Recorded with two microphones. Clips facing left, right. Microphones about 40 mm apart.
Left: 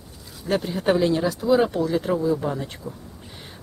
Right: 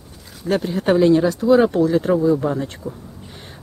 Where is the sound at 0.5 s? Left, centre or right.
Centre.